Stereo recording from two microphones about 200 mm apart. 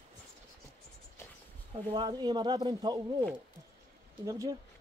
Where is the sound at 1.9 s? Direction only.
20° right (ahead or behind).